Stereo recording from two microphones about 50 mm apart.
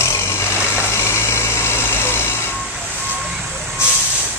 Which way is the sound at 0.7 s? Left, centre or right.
Left.